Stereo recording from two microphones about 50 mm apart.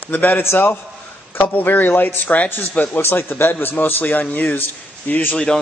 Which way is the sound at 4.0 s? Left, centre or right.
Left.